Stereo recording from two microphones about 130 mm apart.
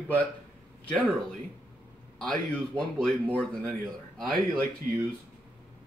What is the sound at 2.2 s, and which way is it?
Speech, 5° left (ahead or behind).